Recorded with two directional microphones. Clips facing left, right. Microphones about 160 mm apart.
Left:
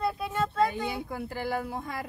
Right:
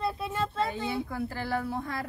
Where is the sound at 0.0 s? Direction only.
30° right (ahead or behind).